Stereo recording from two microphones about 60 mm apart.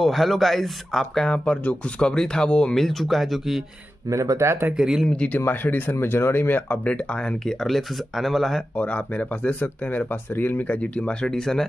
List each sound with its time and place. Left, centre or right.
0.0 s speech: centre
1.4 s speech: left
2.8 s speech: centre
4.1 s speech: right
4.7 s speech: centre
5.0 s speech: centre
5.5 s speech: left
6.9 s speech: centre
7.6 s speech: centre
8.7 s speech: left